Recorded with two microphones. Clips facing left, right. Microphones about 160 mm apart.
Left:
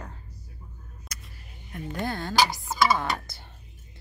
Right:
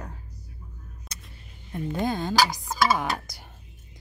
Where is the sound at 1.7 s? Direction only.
20° right (ahead or behind).